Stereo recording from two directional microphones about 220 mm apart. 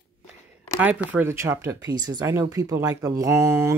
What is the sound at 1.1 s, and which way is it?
Speech, 10° right (ahead or behind).